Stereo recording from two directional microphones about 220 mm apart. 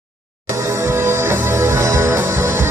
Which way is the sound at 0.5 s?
10° right (ahead or behind).